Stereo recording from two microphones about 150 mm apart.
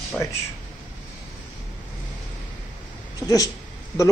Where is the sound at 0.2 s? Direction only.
20° left (ahead or behind).